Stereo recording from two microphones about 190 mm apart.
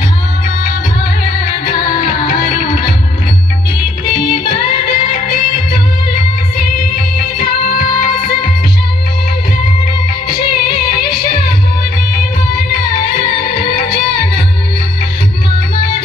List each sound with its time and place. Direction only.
1.4 s music: 55° left (ahead or behind)
4.3 s music: 55° left (ahead or behind)
7.4 s music: 50° left (ahead or behind)
10.3 s music: 50° left (ahead or behind)
12.6 s music: 55° left (ahead or behind)